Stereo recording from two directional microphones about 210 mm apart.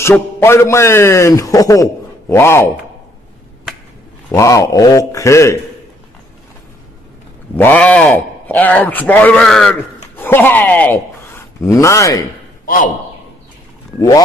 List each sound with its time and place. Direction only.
0.0 s a man's voice: 10° left (ahead or behind)
4.3 s a man's voice: 15° left (ahead or behind)
7.5 s a man's voice: 10° left (ahead or behind)
13.9 s a man's voice: 15° left (ahead or behind)